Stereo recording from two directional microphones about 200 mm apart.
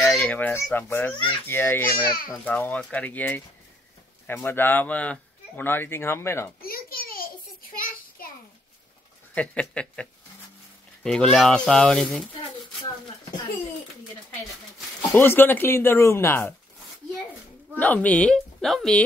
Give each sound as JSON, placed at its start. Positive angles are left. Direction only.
{"t": 0.0, "sound": "a child's voice", "side_deg": 5}
{"t": 2.0, "sound": "a child's voice", "side_deg": 45}
{"t": 2.4, "sound": "speech", "side_deg": 10}
{"t": 6.6, "sound": "a sound", "side_deg": 50}
{"t": 7.7, "sound": "child singing", "side_deg": 45}
{"t": 9.3, "sound": "speech", "side_deg": 5}
{"t": 11.1, "sound": "speech", "side_deg": 5}
{"t": 15.0, "sound": "speech", "side_deg": 10}
{"t": 17.7, "sound": "speech", "side_deg": 5}